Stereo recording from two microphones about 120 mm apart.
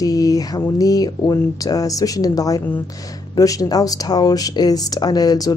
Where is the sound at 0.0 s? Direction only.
30° left (ahead or behind).